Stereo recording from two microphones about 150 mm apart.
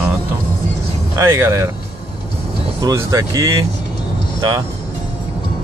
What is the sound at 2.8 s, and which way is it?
Speech, 20° right (ahead or behind).